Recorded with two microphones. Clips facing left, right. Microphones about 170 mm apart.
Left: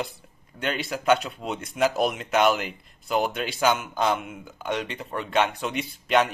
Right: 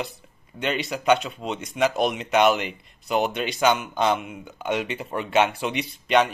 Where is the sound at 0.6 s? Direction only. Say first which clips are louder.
Right 2 dB; centre (ahead or behind).